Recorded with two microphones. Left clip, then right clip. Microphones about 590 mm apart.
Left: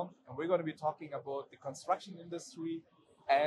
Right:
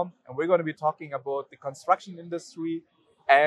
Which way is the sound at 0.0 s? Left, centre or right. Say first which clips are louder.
Right 10 dB; right.